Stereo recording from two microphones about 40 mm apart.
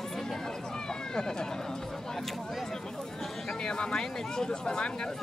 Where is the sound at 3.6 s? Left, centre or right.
Centre.